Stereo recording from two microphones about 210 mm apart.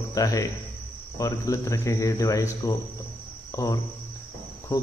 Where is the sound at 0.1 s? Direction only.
15° left (ahead or behind).